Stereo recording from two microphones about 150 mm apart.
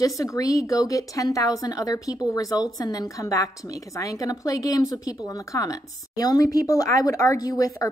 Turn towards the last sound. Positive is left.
turn(degrees=25)  # may be behind; listen again after turning